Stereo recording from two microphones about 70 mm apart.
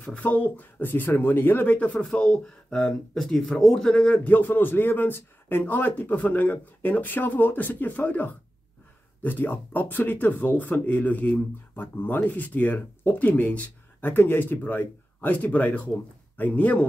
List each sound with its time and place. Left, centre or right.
0.0 s speech: left
2.0 s speech: centre